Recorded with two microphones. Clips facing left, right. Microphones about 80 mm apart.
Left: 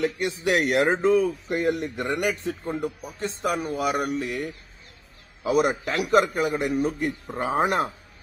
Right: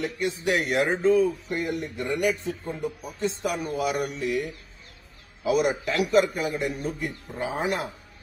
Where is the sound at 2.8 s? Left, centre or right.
Left.